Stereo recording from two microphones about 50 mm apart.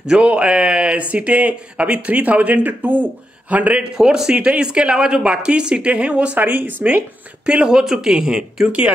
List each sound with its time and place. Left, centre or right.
0.2 s speech: right
3.9 s speech: centre; by 7.0 s right
7.4 s speech: centre